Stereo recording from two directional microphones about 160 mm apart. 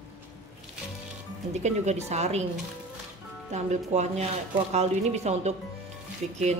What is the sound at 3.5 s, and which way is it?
Speech, 45° right (ahead or behind).